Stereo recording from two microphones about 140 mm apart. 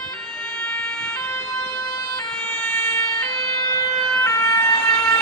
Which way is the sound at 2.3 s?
10° left (ahead or behind).